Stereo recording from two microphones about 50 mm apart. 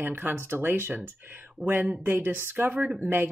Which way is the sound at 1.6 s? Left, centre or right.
Centre.